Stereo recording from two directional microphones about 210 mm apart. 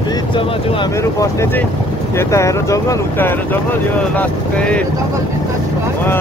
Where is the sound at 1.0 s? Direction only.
15° left (ahead or behind).